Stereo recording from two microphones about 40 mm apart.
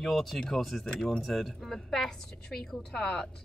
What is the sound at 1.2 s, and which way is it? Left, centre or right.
A man's voice, centre.